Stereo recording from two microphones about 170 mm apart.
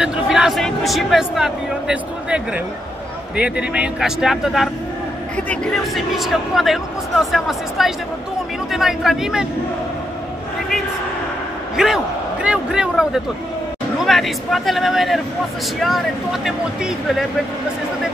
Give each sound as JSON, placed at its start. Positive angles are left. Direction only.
{"t": 0.0, "sound": "speech", "side_deg": -5}
{"t": 11.7, "sound": "a man's voice", "side_deg": -5}